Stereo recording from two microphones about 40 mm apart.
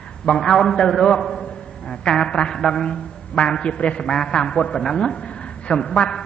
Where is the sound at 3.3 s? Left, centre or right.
Left.